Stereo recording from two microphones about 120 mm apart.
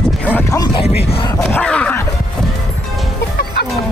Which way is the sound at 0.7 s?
55° left (ahead or behind).